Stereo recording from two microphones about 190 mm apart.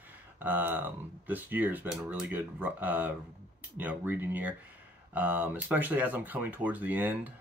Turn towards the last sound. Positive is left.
turn(degrees=-10)  # may be behind; listen again after turning